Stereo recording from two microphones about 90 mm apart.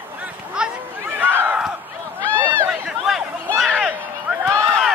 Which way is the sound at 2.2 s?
15° left (ahead or behind).